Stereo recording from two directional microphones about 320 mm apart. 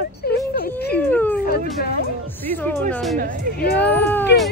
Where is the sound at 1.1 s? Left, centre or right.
Centre.